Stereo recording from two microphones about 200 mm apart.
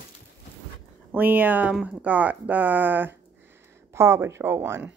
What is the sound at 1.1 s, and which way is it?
Speech, 10° right (ahead or behind).